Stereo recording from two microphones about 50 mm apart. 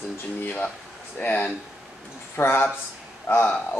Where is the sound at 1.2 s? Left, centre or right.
Left.